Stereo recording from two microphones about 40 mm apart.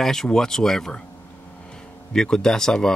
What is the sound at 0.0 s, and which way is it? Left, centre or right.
Speech, centre.